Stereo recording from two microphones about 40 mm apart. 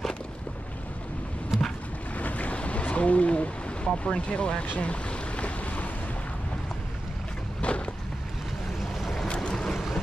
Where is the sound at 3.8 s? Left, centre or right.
Left.